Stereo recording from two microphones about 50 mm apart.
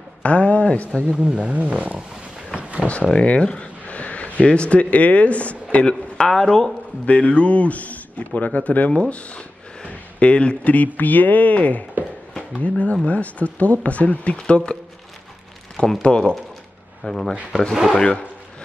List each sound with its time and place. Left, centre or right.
0.2 s a sound: left
1.1 s speech: centre
2.5 s a sound: right
2.9 s speech: left
7.1 s speech: left
14.3 s speech: centre
15.7 s a sound: centre
16.0 s speech: centre
17.0 s speech: centre
17.9 s speech: centre